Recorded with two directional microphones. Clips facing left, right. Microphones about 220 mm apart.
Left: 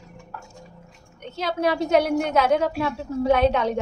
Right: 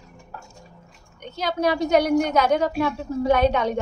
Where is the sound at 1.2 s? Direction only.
Centre (ahead or behind).